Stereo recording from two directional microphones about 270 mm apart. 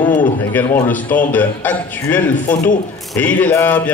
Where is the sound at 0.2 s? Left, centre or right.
Centre.